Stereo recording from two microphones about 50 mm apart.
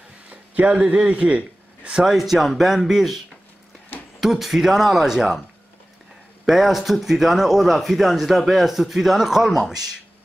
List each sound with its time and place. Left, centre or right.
0.3 s a man's voice: right
2.0 s a man's voice: centre
4.2 s a man's voice: centre
6.4 s a man's voice: centre